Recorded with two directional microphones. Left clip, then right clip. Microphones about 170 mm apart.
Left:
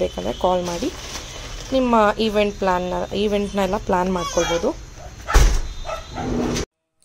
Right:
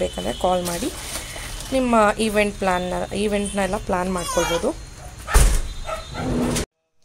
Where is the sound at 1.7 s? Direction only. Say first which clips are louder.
Left 1 dB; 5° left (ahead or behind).